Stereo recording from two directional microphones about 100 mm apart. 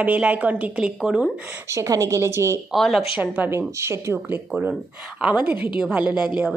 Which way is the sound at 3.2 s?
20° right (ahead or behind).